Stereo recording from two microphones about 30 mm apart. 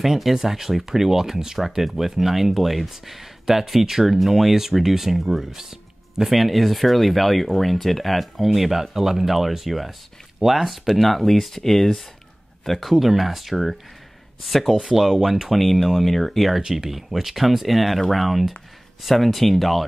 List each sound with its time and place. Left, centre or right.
0.0 s speech: centre
5.5 s music: centre
6.3 s speech: centre
10.9 s speech: centre
12.9 s speech: centre
15.5 s speech: centre
16.6 s speech: centre